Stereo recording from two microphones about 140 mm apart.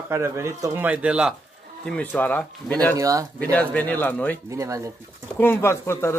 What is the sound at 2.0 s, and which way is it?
Speech, 10° left (ahead or behind).